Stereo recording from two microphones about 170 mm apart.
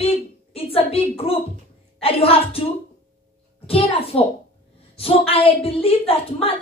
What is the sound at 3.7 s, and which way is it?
Speech, 35° left (ahead or behind).